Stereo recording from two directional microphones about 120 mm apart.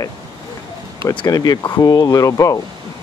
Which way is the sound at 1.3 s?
30° left (ahead or behind).